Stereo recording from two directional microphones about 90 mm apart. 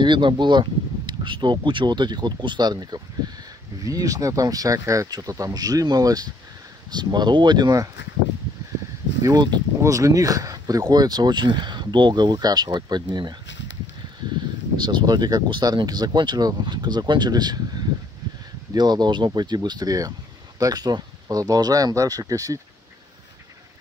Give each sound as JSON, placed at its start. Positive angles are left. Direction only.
{"t": 0.0, "sound": "speech", "side_deg": -60}
{"t": 3.2, "sound": "a sound", "side_deg": -50}
{"t": 3.8, "sound": "speech", "side_deg": -40}
{"t": 9.2, "sound": "speech", "side_deg": -50}
{"t": 9.8, "sound": "speech", "side_deg": -40}
{"t": 14.8, "sound": "speech", "side_deg": -60}